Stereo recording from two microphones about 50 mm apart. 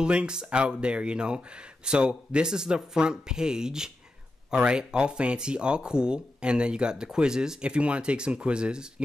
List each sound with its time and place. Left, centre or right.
0.0 s speech: centre